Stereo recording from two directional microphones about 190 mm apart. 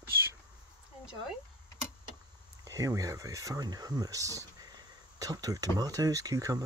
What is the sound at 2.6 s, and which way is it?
Speech, 15° right (ahead or behind).